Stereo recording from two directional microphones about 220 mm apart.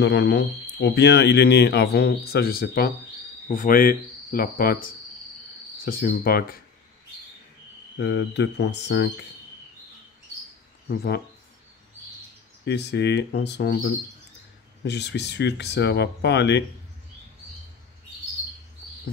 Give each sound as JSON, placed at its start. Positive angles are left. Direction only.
{"t": 0.0, "sound": "speech", "side_deg": 55}
{"t": 8.0, "sound": "speech", "side_deg": 55}
{"t": 10.9, "sound": "speech", "side_deg": 45}
{"t": 12.6, "sound": "speech", "side_deg": 50}